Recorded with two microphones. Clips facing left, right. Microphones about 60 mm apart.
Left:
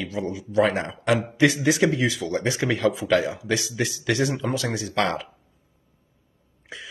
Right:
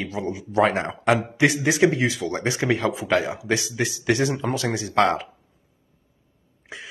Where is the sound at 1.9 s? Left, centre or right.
Right.